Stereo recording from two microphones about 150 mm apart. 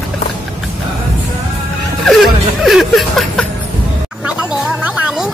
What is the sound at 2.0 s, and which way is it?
Music, centre (ahead or behind).